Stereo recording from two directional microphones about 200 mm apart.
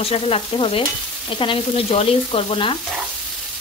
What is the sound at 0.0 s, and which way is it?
Speech, 30° left (ahead or behind).